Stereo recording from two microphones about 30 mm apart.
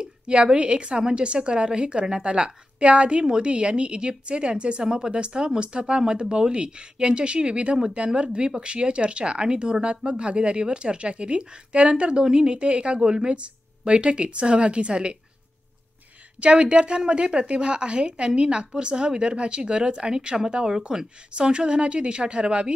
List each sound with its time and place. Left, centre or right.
0.6 s speech: right
4.8 s speech: right
13.0 s speech: right
16.3 s speech: right